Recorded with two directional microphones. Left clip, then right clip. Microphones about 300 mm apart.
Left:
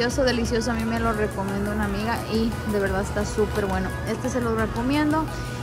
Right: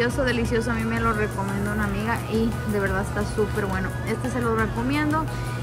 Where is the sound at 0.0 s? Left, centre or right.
Centre.